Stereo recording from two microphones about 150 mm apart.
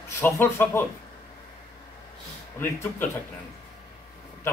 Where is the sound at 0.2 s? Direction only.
15° left (ahead or behind).